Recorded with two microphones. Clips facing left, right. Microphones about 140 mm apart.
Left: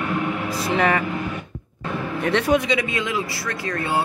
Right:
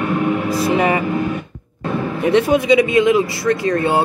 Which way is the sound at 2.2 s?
10° right (ahead or behind).